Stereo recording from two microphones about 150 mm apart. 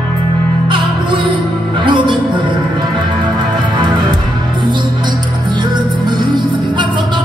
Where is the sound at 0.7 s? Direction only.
35° right (ahead or behind).